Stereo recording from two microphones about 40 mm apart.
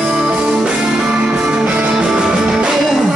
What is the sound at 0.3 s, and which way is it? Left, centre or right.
Music, right.